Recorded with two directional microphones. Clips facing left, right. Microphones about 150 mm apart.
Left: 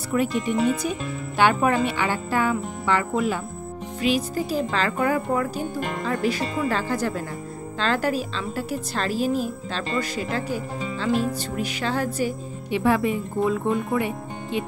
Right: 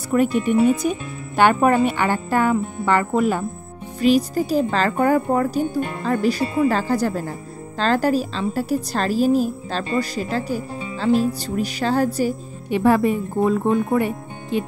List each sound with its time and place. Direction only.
0.1 s a woman's voice: 50° right (ahead or behind)
6.7 s a woman's voice: 40° right (ahead or behind)